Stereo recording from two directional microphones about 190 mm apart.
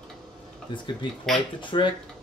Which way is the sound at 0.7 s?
25° left (ahead or behind).